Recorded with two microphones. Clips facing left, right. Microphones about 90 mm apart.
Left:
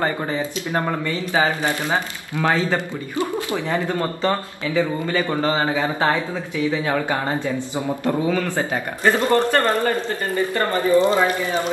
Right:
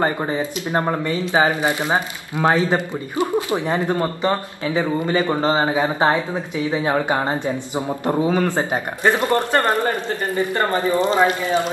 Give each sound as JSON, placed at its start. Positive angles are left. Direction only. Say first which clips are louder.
{"t": 0.0, "sound": "speech", "louder": "right 2 dB", "side_deg": -20}